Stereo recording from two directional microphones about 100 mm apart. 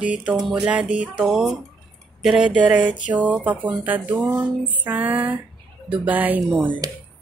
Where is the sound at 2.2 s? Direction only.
10° right (ahead or behind).